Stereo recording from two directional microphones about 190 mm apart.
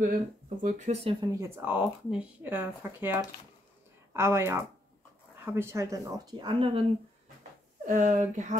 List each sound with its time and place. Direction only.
0.6 s speech: 40° right (ahead or behind)
1.2 s speech: 15° right (ahead or behind)
7.8 s speech: 40° right (ahead or behind)